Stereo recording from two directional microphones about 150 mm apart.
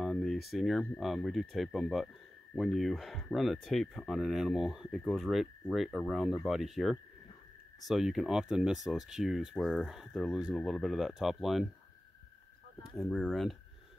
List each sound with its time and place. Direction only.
0.0 s a sound: centre (ahead or behind)
0.5 s speech: centre (ahead or behind)
12.9 s speech: centre (ahead or behind)